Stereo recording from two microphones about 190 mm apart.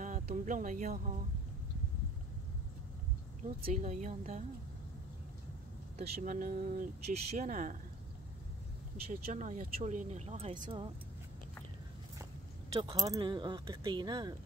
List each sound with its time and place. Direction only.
0.0 s a sound: 45° right (ahead or behind)
3.6 s speech: 40° right (ahead or behind)
6.0 s speech: 50° right (ahead or behind)
9.1 s speech: 45° right (ahead or behind); by 10.9 s 30° right (ahead or behind)
12.8 s speech: 20° right (ahead or behind)